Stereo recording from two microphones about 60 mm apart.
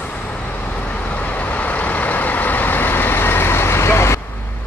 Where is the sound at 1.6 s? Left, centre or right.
Left.